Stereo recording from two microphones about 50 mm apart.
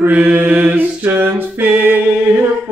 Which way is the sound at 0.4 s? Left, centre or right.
Right.